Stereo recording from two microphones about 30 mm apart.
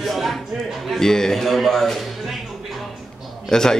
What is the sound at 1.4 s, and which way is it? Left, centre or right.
Speech, centre.